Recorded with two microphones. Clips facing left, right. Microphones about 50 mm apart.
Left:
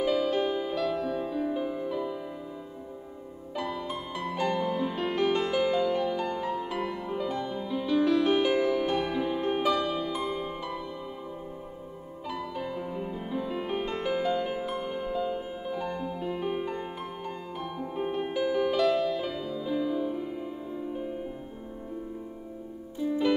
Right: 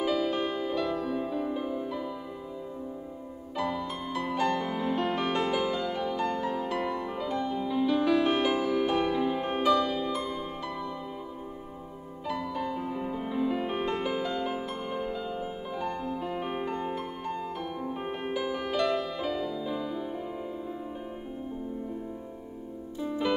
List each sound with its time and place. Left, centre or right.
0.0 s music: centre
3.5 s music: centre
12.3 s music: centre
12.8 s music: centre